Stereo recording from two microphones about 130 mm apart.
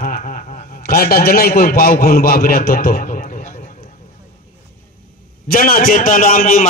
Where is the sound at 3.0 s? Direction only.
90° left.